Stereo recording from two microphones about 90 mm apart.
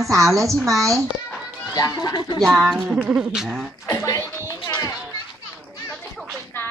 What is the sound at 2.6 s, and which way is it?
Speech, 5° right (ahead or behind).